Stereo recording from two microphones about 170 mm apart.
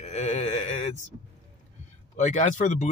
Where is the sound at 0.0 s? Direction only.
40° left (ahead or behind).